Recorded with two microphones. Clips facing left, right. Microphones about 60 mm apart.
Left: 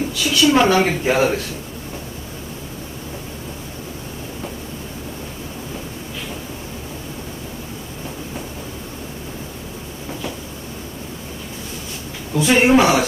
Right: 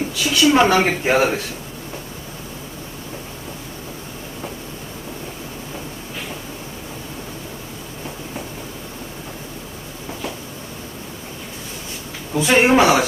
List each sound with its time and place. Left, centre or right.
0.2 s speech: right
12.4 s speech: right